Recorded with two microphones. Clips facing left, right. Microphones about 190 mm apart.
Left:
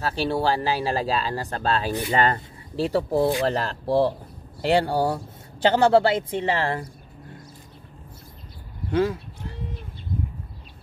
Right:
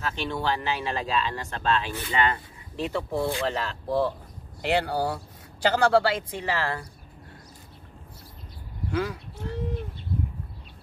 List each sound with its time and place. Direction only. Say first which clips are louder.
0.0 s speech: left 6 dB; 35° left (ahead or behind)
8.9 s speech: left 7 dB; 30° left (ahead or behind)